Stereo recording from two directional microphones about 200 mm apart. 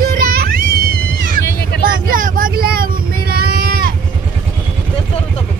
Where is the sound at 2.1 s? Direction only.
45° right (ahead or behind).